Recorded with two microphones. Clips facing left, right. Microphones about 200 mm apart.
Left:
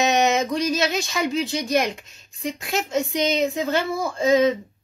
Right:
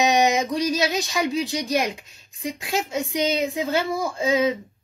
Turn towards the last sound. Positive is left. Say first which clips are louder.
# left 3 dB
turn(degrees=-10)  # may be behind; listen again after turning